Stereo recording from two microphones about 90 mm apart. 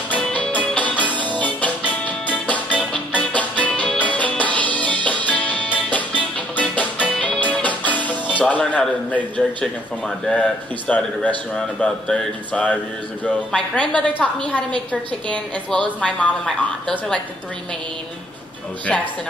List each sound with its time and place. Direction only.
0.1 s music: 15° left (ahead or behind)
8.4 s a woman's voice: 15° left (ahead or behind)
10.9 s a woman's voice: 10° left (ahead or behind)